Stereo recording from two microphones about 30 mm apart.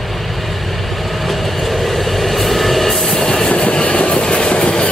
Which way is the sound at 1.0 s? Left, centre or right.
Centre.